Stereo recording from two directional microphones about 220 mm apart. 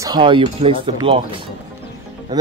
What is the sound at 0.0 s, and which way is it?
Speech, 20° right (ahead or behind).